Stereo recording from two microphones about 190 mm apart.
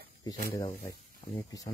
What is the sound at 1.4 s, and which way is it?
Speech, 20° left (ahead or behind).